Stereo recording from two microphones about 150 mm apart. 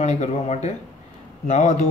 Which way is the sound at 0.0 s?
50° left (ahead or behind).